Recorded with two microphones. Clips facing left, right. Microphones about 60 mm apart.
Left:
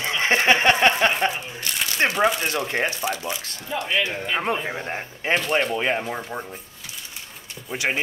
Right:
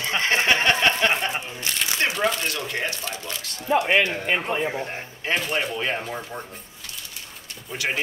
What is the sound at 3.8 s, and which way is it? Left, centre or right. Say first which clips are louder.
Speech: even; right.